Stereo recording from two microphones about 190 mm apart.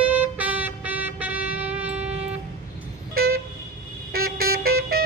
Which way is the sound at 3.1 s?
55° right (ahead or behind).